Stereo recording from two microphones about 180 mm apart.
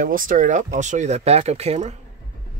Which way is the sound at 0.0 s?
50° right (ahead or behind).